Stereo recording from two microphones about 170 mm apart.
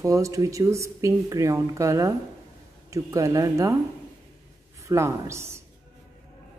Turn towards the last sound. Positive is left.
turn(degrees=-15)  # may be behind; listen again after turning